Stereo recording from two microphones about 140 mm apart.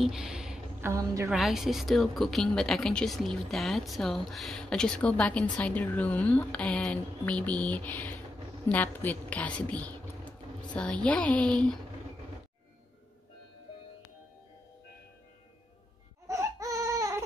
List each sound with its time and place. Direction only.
0.0 s a sound: 5° right (ahead or behind)
0.7 s a woman's voice: 20° right (ahead or behind)
1.3 s a woman's voice: 5° right (ahead or behind)
16.3 s baby cry: 25° right (ahead or behind)